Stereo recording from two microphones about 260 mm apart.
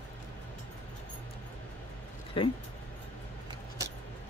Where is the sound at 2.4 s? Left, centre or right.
Left.